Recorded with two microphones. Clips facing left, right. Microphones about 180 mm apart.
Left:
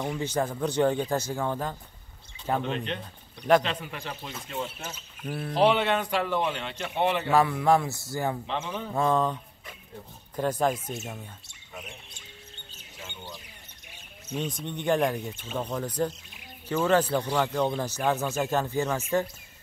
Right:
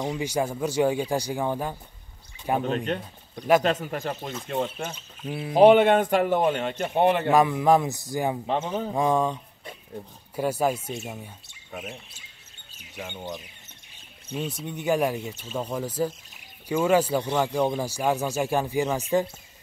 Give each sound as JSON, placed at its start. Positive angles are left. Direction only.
{"t": 0.2, "sound": "speech", "side_deg": -10}
{"t": 2.6, "sound": "a man's voice", "side_deg": -45}
{"t": 5.3, "sound": "speech", "side_deg": -10}
{"t": 5.6, "sound": "a man's voice", "side_deg": -50}
{"t": 7.2, "sound": "speech", "side_deg": -15}
{"t": 8.5, "sound": "a man's voice", "side_deg": -45}
{"t": 8.9, "sound": "speech", "side_deg": -10}
{"t": 12.9, "sound": "speech", "side_deg": -55}
{"t": 14.3, "sound": "speech", "side_deg": -5}